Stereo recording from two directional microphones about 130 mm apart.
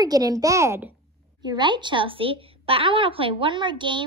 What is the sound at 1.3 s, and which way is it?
A woman's voice, 35° right (ahead or behind).